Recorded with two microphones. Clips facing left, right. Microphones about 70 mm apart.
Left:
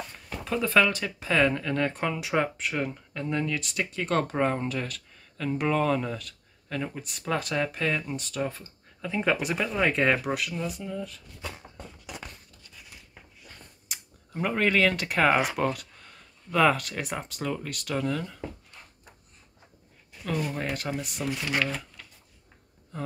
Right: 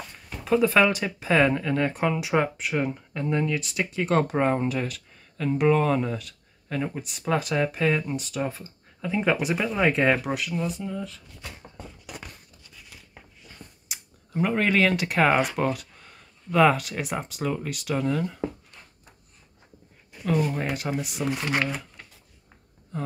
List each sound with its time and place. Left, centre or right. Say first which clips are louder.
0.5 s speech: right 4 dB; centre
13.4 s speech: right 3 dB; centre
20.2 s speech: right 5 dB; centre
21.3 s speech: right 2 dB; right